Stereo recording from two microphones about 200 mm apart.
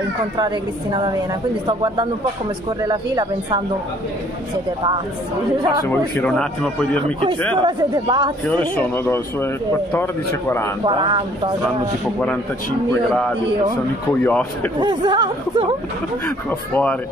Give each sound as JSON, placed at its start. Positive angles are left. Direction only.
{"t": 1.7, "sound": "speech", "side_deg": -25}
{"t": 5.6, "sound": "speech", "side_deg": -20}
{"t": 5.9, "sound": "a man's voice", "side_deg": 5}
{"t": 7.6, "sound": "speech", "side_deg": -20}
{"t": 8.5, "sound": "speech", "side_deg": 10}
{"t": 10.9, "sound": "speech", "side_deg": -25}
{"t": 14.2, "sound": "speech", "side_deg": 10}
{"t": 14.8, "sound": "speech", "side_deg": -25}
{"t": 16.3, "sound": "speech", "side_deg": 10}